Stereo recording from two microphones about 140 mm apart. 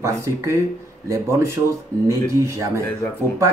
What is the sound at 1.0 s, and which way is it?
A man's voice, 20° right (ahead or behind).